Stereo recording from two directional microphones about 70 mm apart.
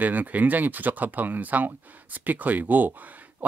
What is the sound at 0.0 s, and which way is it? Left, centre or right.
Speech, right.